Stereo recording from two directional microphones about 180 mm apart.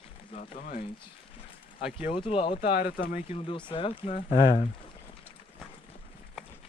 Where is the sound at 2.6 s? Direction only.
50° left (ahead or behind).